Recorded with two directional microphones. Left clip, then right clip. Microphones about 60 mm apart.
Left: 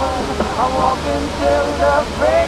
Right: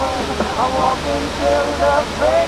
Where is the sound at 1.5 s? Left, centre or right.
Centre.